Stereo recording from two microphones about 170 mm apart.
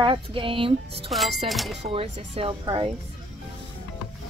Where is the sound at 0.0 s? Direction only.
30° right (ahead or behind).